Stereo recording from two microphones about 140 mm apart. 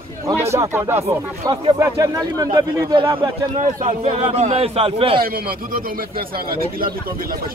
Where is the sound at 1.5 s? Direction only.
30° right (ahead or behind).